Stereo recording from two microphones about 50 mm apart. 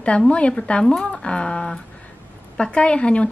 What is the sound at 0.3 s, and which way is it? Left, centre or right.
Speech, left.